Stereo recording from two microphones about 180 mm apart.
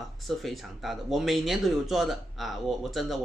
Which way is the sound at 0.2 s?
Centre (ahead or behind).